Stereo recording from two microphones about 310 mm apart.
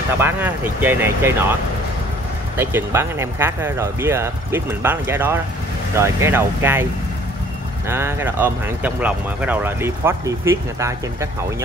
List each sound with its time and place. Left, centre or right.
0.2 s speech: centre
2.5 s speech: centre
7.9 s speech: centre